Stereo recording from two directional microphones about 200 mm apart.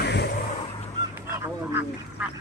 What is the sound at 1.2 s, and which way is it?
Speech, 10° right (ahead or behind).